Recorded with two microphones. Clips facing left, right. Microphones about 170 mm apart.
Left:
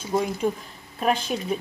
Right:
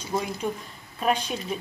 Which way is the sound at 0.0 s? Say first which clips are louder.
Left 4 dB; 5° left (ahead or behind).